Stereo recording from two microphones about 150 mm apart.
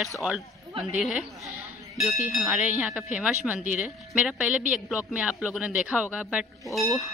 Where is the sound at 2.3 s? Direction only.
Centre (ahead or behind).